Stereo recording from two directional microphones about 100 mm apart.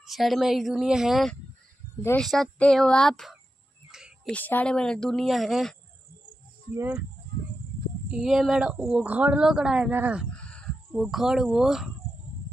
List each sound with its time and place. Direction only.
0.0 s speech: centre (ahead or behind)
3.9 s a sound: 5° right (ahead or behind)
4.3 s speech: 15° left (ahead or behind); by 5.8 s centre (ahead or behind)
8.1 s speech: 5° right (ahead or behind)
10.3 s a sound: 10° left (ahead or behind)
11.0 s speech: 5° right (ahead or behind)